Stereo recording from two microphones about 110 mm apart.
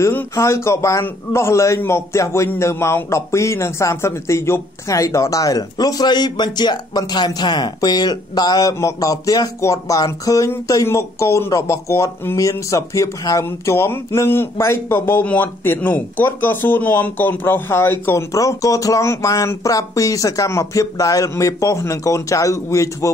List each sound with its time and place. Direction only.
0.0 s a man's voice: 25° left (ahead or behind)